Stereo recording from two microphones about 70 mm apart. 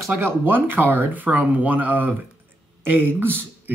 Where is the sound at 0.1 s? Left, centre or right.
Right.